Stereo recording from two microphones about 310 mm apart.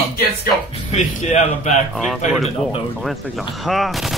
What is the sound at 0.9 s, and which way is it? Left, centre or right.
Speech, left.